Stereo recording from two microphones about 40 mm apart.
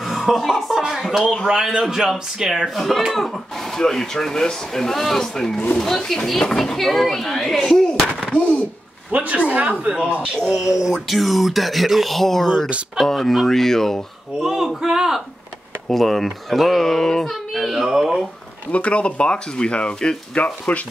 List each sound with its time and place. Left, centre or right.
0.0 s music: centre
1.4 s a man's voice: centre
2.7 s speech: centre
8.4 s speech: left
9.1 s speech: right
10.6 s speech: centre
14.4 s a man's voice: centre
15.9 s speech: centre
17.3 s speech: centre
18.7 s speech: left